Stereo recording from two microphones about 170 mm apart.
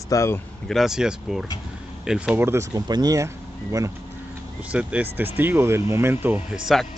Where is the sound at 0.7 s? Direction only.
Centre (ahead or behind); by 3.9 s 20° right (ahead or behind).